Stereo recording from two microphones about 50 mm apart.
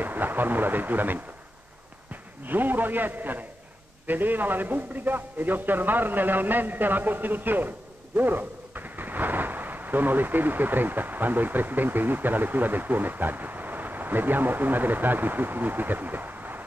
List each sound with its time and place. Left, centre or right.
0.0 s speech: right
2.4 s a man's voice: right